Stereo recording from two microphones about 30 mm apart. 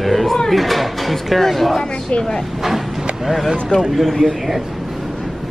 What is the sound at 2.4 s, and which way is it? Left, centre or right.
Speech, centre.